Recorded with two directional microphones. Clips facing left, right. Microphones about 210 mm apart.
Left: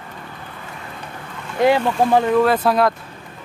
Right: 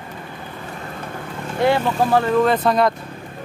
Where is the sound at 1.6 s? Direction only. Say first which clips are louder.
Left 2 dB; 15° left (ahead or behind).